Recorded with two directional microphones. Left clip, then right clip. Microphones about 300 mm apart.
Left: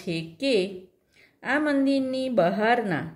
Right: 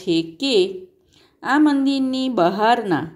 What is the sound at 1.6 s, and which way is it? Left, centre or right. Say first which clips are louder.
Speech: right 5 dB; centre.